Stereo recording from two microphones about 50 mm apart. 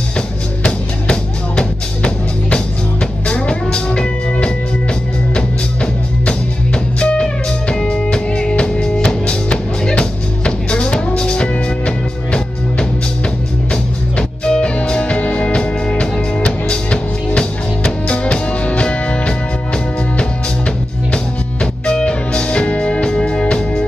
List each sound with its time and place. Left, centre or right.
0.7 s music: left